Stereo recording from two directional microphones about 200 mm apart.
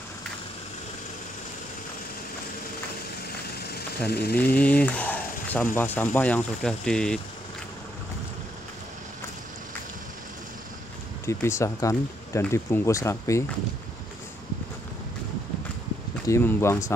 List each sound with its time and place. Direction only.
3.4 s a sound: 55° left (ahead or behind)
4.4 s speech: 10° left (ahead or behind)
11.2 s speech: 15° left (ahead or behind)
16.3 s speech: 10° left (ahead or behind)